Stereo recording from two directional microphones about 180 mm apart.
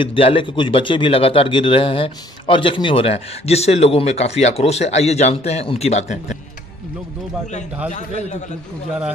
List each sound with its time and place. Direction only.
0.0 s speech: 30° left (ahead or behind)
7.9 s speech: 40° left (ahead or behind)